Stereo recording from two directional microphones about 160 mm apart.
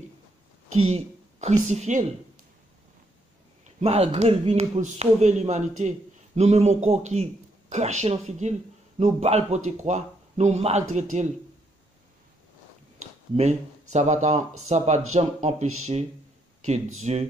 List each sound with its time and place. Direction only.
0.8 s a woman's voice: 45° right (ahead or behind)
3.8 s a man's voice: 40° right (ahead or behind)
13.0 s a man's voice: 45° right (ahead or behind)